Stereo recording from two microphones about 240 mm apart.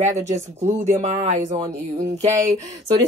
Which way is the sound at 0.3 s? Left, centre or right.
Right.